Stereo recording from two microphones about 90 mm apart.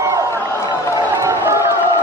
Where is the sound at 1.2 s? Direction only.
30° right (ahead or behind).